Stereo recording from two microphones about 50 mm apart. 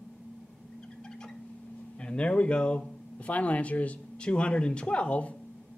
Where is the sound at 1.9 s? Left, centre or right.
Left.